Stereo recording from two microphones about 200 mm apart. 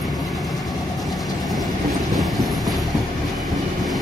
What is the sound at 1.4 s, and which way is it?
Train, centre (ahead or behind).